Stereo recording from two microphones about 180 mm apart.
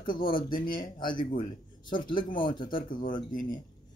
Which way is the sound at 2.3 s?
25° left (ahead or behind).